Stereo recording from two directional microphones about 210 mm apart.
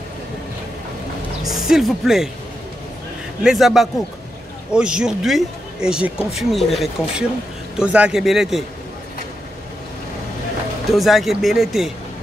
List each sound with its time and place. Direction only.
1.5 s speech: centre (ahead or behind)
3.4 s speech: centre (ahead or behind)
10.9 s speech: centre (ahead or behind)